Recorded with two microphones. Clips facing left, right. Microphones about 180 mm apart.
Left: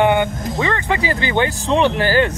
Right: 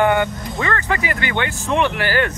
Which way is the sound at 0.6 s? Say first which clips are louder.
Left 2 dB; 20° left (ahead or behind).